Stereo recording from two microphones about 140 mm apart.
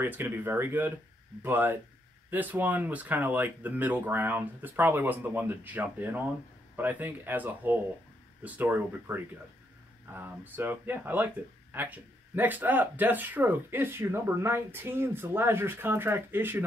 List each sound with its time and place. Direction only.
0.0 s speech: 15° right (ahead or behind)